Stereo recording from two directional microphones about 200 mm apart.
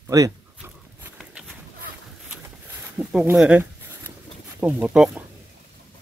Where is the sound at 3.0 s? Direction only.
5° right (ahead or behind).